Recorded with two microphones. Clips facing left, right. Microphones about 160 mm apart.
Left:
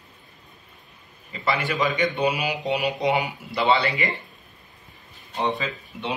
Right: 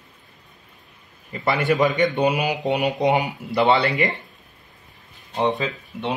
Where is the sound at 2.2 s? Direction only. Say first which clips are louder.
Right 3 dB; 50° right (ahead or behind).